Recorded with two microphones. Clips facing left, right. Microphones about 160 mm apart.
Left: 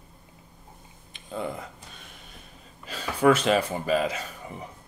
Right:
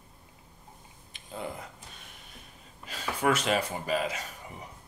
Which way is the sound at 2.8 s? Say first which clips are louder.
Left 7 dB; 30° left (ahead or behind).